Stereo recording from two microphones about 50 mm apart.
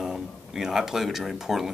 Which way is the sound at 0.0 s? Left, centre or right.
Centre.